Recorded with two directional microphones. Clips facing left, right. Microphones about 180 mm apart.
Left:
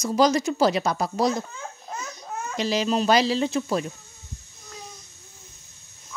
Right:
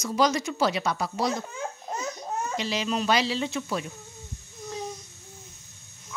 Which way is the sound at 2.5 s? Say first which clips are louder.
Left 7 dB; 40° left (ahead or behind).